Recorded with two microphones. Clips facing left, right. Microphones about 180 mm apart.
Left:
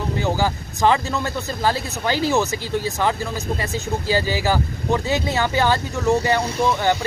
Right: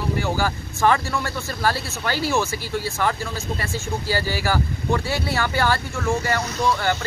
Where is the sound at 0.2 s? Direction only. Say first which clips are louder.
Left 2 dB; 20° left (ahead or behind).